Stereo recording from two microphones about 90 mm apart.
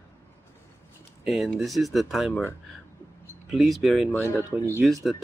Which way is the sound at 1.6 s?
Centre (ahead or behind).